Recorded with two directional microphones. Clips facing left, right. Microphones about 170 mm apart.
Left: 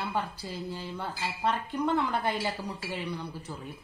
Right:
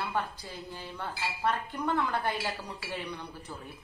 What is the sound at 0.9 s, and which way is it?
Speech, 10° left (ahead or behind).